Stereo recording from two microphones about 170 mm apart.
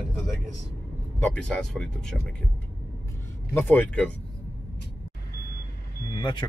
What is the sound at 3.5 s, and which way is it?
Speech, 10° left (ahead or behind).